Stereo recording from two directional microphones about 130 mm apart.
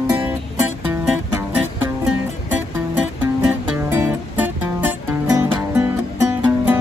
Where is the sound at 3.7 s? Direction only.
20° right (ahead or behind).